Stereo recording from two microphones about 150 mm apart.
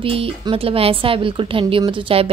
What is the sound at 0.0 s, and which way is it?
A woman's voice, 40° right (ahead or behind).